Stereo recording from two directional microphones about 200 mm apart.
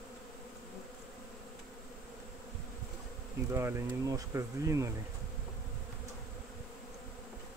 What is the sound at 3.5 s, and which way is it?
Speech, 15° right (ahead or behind).